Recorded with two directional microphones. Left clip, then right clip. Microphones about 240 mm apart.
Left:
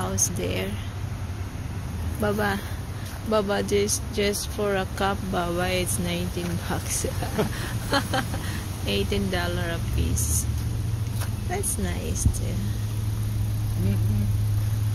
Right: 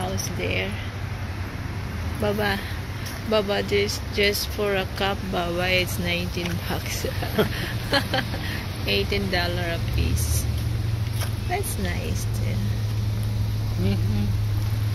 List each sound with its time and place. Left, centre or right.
0.1 s speech: left
2.2 s speech: centre
7.9 s speech: centre
11.5 s speech: centre